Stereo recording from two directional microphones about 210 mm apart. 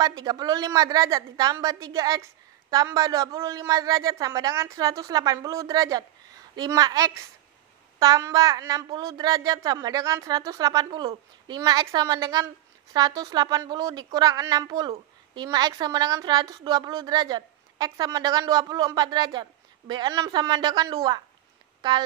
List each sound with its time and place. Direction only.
0.0 s speech: 20° right (ahead or behind)